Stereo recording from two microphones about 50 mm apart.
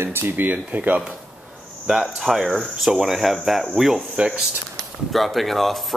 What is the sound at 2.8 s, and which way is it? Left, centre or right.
Speech, centre.